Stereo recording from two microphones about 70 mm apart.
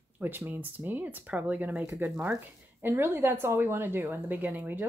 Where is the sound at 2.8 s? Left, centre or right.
Right.